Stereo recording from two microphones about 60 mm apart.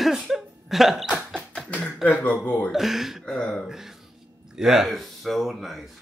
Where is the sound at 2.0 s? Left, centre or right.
Centre.